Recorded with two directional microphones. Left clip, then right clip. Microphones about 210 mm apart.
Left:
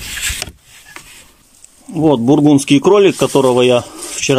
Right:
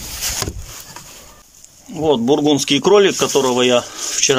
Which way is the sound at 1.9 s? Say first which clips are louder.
Left 3 dB; 10° left (ahead or behind).